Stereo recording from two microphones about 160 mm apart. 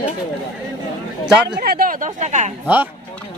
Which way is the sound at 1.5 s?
75° right (ahead or behind).